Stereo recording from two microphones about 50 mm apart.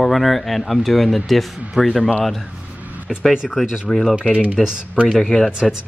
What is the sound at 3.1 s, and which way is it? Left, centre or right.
Speech, centre.